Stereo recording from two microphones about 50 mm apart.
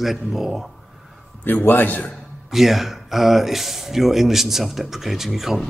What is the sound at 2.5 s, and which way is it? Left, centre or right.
Speech, centre.